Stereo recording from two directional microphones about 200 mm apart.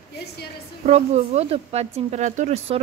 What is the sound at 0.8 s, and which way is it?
A woman's voice, 35° right (ahead or behind).